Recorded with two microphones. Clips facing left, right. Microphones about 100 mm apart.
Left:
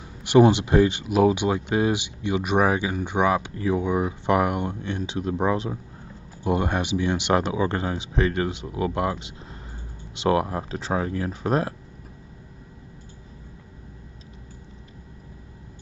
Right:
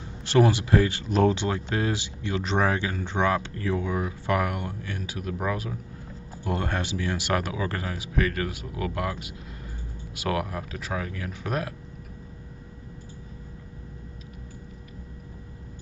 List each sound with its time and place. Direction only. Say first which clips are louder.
0.2 s speech: left 5 dB; 20° left (ahead or behind)
1.0 s speech: left 3 dB; 10° left (ahead or behind); by 11.7 s 30° left (ahead or behind)